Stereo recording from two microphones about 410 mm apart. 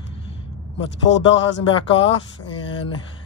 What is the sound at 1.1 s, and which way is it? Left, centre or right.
Speech, left.